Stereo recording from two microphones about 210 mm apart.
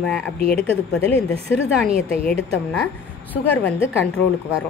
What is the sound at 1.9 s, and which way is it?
Speech, 30° right (ahead or behind).